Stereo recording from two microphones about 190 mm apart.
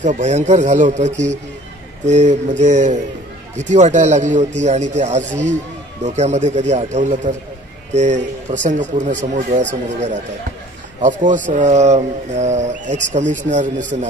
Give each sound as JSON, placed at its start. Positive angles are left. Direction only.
{"t": 0.0, "sound": "speech", "side_deg": -40}